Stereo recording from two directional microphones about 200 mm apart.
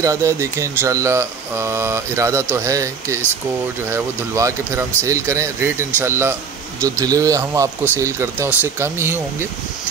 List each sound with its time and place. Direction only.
0.0 s speech: 15° right (ahead or behind)